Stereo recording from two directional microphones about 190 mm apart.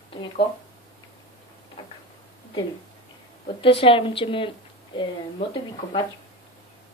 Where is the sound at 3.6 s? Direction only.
30° left (ahead or behind).